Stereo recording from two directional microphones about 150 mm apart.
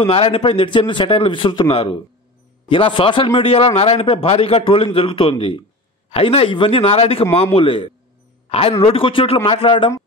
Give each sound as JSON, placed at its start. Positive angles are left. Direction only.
{"t": 0.0, "sound": "a man's voice", "side_deg": 40}